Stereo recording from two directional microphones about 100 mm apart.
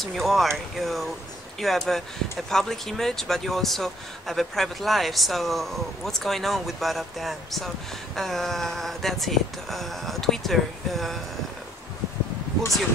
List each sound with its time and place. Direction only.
0.0 s speech: centre (ahead or behind)